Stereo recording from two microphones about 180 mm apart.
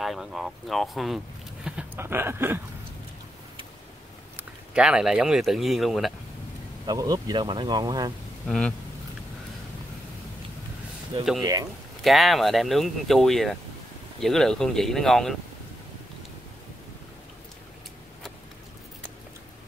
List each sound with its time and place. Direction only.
0.0 s speech: centre (ahead or behind)
4.4 s speech: 5° right (ahead or behind)
6.9 s speech: 20° right (ahead or behind)
8.5 s speech: 5° left (ahead or behind)
12.0 s speech: centre (ahead or behind)